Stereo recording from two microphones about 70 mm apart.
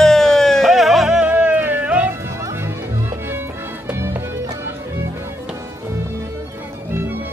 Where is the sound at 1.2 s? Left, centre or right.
Right.